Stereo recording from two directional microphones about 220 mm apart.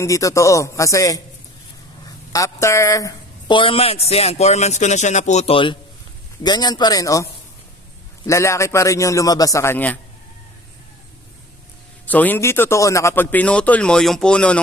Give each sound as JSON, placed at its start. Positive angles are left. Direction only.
{"t": 0.0, "sound": "a woman's voice", "side_deg": 15}
{"t": 8.3, "sound": "speech", "side_deg": 15}
{"t": 12.1, "sound": "speech", "side_deg": 10}